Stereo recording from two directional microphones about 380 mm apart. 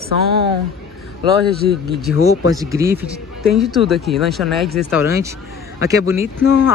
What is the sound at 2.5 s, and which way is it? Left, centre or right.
Speech, centre.